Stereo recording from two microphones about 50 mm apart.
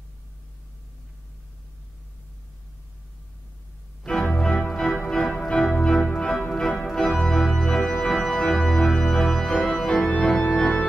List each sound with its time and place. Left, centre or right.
4.0 s organ: centre
5.0 s music: centre
5.5 s organ: centre